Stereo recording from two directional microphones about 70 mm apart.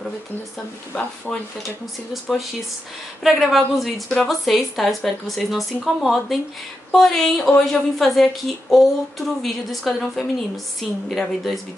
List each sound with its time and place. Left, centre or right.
0.9 s speech: centre
3.3 s a woman's voice: centre